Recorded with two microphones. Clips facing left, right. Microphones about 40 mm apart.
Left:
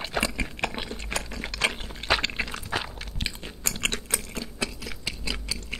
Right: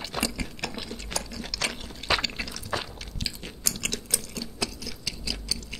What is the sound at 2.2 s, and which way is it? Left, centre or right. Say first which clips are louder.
Crunch: left 3 dB; left.